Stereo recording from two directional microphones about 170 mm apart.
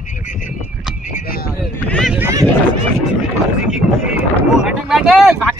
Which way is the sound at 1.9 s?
5° left (ahead or behind).